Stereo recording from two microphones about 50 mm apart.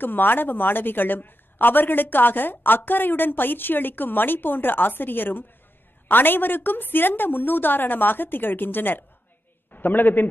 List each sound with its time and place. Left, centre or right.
0.0 s a woman's voice: left